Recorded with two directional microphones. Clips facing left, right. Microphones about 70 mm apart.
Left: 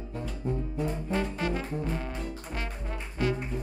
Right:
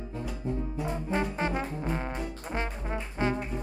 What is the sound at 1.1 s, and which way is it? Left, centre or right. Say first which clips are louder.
Trombone: right 2 dB; right.